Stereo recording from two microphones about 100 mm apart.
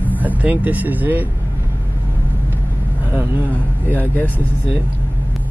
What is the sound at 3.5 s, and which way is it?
Speech, 15° left (ahead or behind).